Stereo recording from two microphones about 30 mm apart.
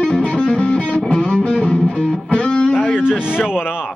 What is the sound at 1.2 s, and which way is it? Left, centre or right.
Music, left.